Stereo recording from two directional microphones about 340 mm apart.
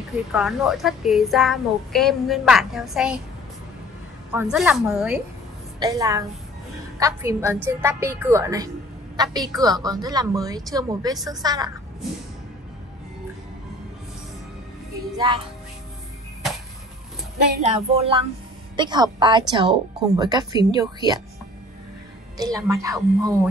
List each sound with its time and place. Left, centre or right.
0.3 s a woman's voice: centre
4.3 s a woman's voice: centre
15.1 s a woman's voice: centre
17.6 s a woman's voice: centre
22.4 s a woman's voice: centre